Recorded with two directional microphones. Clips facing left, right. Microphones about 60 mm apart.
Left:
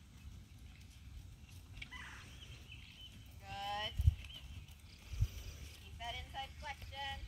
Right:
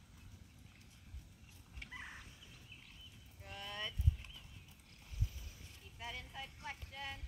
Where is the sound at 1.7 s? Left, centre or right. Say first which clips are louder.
Right 2 dB; centre.